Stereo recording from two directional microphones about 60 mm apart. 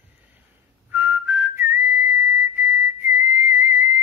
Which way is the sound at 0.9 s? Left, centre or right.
Right.